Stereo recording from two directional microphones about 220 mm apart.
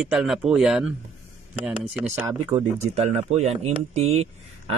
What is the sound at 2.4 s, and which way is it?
Speech, 25° right (ahead or behind).